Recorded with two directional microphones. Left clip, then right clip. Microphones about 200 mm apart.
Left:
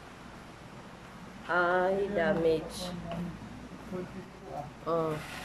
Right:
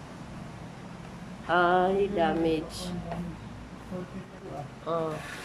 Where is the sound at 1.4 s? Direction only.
5° right (ahead or behind).